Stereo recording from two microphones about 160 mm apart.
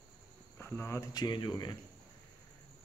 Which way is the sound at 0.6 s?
15° left (ahead or behind).